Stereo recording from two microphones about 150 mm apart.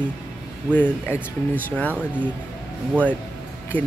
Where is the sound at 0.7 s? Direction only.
10° left (ahead or behind).